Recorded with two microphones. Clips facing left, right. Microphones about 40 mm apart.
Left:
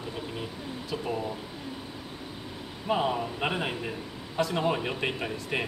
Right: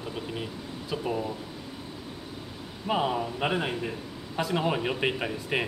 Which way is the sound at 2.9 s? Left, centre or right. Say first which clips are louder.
Even; centre.